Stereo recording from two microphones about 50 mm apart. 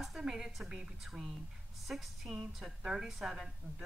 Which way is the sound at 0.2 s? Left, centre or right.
Centre.